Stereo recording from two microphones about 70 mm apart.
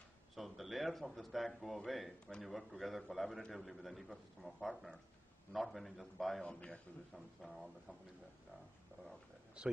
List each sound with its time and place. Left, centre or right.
0.4 s a man's voice: centre
6.4 s a man's voice: centre
7.4 s a man's voice: centre
9.6 s speech: centre